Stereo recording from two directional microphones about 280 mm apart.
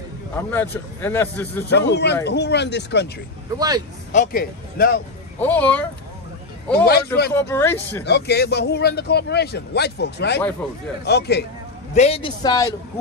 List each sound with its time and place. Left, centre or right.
0.4 s a man's voice: centre
1.7 s a man's voice: left
3.5 s speech: centre
4.1 s speech: left
5.4 s speech: centre
6.8 s a man's voice: left
7.3 s a man's voice: centre
8.0 s a man's voice: left
11.9 s a man's voice: left